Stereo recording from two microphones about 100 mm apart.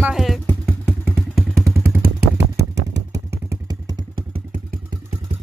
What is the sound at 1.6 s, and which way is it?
Vehicle, 30° right (ahead or behind).